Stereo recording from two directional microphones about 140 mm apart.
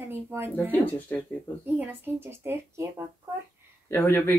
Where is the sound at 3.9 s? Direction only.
15° left (ahead or behind).